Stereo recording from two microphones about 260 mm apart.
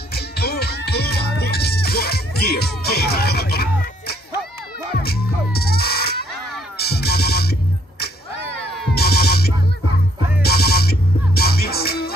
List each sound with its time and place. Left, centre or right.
0.1 s music: left
5.0 s music: left
8.9 s music: left